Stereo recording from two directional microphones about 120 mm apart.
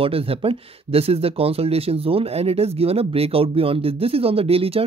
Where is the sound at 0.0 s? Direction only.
50° right (ahead or behind).